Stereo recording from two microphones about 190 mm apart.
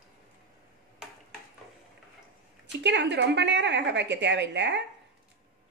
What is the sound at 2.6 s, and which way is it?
A woman's voice, 65° right (ahead or behind).